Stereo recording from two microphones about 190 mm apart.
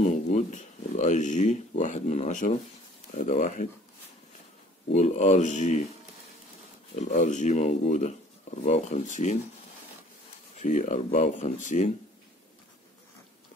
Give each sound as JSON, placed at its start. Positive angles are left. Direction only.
{"t": 0.0, "sound": "speech", "side_deg": 40}
{"t": 4.9, "sound": "speech", "side_deg": 40}
{"t": 7.0, "sound": "speech", "side_deg": 40}
{"t": 10.6, "sound": "speech", "side_deg": 40}